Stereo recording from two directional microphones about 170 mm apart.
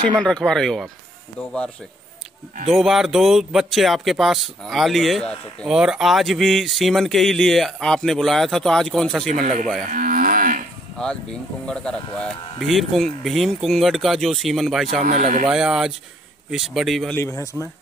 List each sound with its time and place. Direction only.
0.2 s speech: 5° left (ahead or behind)
2.7 s speech: centre (ahead or behind)
9.4 s speech: 50° right (ahead or behind)
9.8 s moo: 55° right (ahead or behind)
11.6 s speech: 5° left (ahead or behind)
15.0 s speech: 45° right (ahead or behind)
15.4 s speech: 5° right (ahead or behind)
17.2 s speech: 15° left (ahead or behind)